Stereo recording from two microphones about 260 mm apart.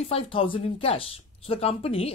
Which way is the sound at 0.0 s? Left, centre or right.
Left.